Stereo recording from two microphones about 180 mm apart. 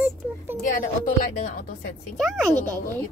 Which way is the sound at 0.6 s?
50° left (ahead or behind).